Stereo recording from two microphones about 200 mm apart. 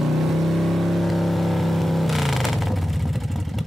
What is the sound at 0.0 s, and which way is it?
Vehicle, centre (ahead or behind).